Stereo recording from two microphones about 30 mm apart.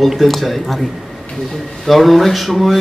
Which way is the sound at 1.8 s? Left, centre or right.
Centre.